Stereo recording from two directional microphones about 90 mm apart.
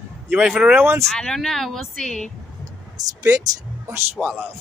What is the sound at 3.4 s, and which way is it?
Speech, 35° right (ahead or behind).